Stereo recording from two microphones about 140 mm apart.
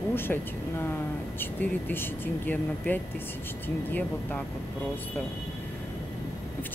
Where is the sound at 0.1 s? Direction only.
15° left (ahead or behind).